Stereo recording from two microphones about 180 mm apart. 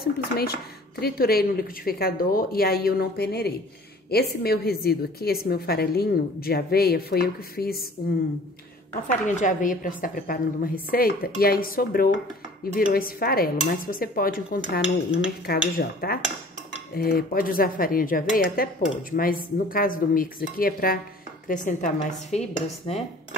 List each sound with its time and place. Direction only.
0.0 s a woman's voice: 60° left (ahead or behind)
9.0 s a woman's voice: 45° left (ahead or behind)
22.9 s cutlery: 35° left (ahead or behind)